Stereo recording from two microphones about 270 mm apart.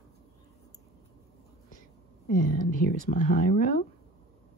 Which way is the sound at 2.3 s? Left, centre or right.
Left.